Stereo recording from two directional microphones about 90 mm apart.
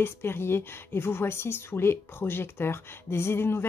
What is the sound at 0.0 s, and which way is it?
Speech, 25° left (ahead or behind).